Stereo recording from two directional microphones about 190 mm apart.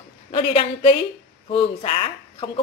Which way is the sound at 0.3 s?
30° left (ahead or behind).